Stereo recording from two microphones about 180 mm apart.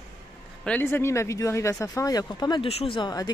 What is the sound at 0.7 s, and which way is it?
Speech, 10° left (ahead or behind).